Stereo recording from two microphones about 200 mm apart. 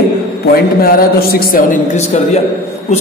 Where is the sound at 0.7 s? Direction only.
50° left (ahead or behind).